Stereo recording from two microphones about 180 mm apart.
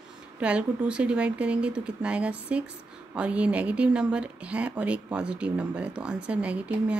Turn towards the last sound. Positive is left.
turn(degrees=-5)  # may be behind; listen again after turning